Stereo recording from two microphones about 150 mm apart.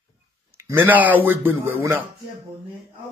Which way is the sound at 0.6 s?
15° right (ahead or behind).